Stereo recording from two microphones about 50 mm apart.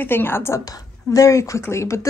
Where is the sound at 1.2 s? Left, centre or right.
Left.